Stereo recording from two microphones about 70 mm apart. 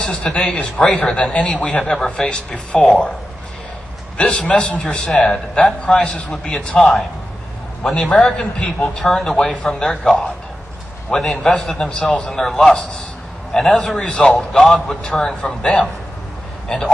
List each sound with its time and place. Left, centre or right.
0.0 s a man's voice: centre
4.2 s a man's voice: centre
11.9 s a man's voice: centre
13.9 s a man's voice: centre
14.6 s a man's voice: centre